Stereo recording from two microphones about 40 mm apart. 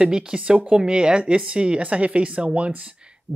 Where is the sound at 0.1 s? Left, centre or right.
Centre.